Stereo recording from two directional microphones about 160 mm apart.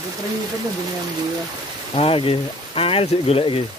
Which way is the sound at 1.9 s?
35° left (ahead or behind).